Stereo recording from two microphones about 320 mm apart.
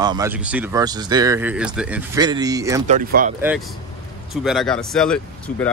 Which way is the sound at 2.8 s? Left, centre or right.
Right.